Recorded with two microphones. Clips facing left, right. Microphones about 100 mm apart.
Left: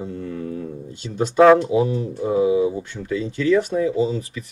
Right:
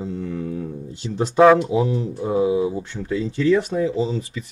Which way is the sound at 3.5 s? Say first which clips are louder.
Left 2 dB; 30° right (ahead or behind).